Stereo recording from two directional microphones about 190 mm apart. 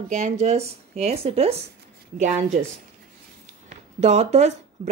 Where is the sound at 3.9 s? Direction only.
35° right (ahead or behind).